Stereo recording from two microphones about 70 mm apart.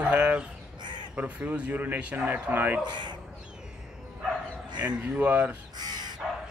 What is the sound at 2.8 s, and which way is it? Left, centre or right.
Speech, right.